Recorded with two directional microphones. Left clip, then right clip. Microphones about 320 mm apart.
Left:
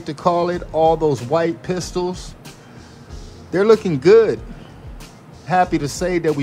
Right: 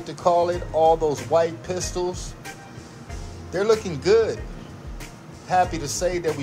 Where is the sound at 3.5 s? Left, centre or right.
Left.